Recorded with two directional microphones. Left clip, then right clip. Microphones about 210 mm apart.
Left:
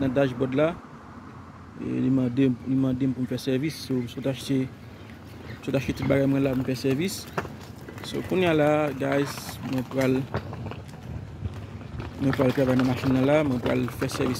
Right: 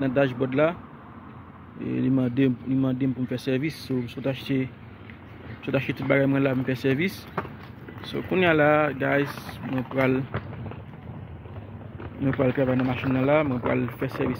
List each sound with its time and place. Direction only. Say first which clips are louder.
0.0 s speech: right 1 dB; 10° left (ahead or behind)
1.9 s speech: even; centre (ahead or behind)
5.7 s speech: right 1 dB; 5° left (ahead or behind)
9.6 s speech: right 1 dB; 15° right (ahead or behind)
9.9 s speech: right 1 dB; 10° left (ahead or behind)
12.3 s speech: even; 20° left (ahead or behind)